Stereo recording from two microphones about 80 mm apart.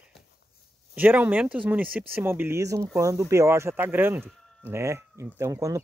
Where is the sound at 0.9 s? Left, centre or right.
Right.